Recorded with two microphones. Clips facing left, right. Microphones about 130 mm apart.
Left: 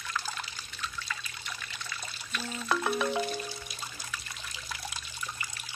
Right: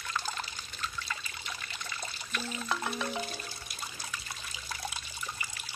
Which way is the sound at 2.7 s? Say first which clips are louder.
Left 6 dB; 60° left (ahead or behind).